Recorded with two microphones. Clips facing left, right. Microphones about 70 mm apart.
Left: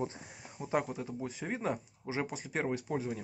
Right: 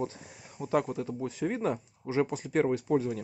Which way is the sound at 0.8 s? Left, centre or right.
Centre.